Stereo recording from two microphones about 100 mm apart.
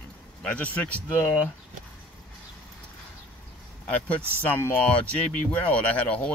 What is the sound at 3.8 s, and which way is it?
Speech, 15° left (ahead or behind).